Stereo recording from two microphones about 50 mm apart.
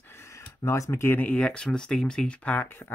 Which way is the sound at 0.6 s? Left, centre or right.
Left.